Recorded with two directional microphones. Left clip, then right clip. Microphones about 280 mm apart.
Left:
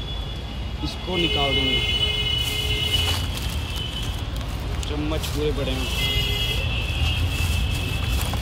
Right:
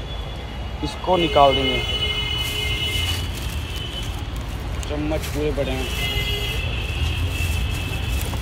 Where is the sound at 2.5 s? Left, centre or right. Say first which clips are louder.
Even; centre.